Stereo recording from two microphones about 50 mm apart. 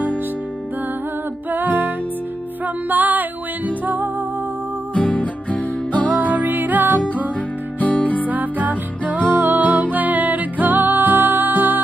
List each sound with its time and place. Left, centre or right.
1.5 s music: right
4.9 s music: left
6.3 s music: right
7.3 s music: left
8.3 s music: right